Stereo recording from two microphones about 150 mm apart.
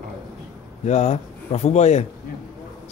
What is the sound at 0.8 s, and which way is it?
Speech, 50° left (ahead or behind).